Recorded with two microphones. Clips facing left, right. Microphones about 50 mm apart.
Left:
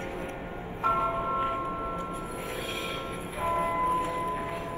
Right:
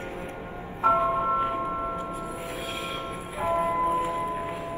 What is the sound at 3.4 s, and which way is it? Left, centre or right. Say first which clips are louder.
Music: right 2 dB; centre.